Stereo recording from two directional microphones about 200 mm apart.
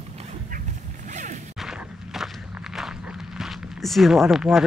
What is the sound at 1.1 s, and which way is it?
Smash, 40° right (ahead or behind).